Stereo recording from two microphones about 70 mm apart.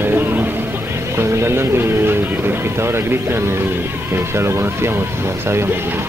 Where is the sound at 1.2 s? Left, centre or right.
Right.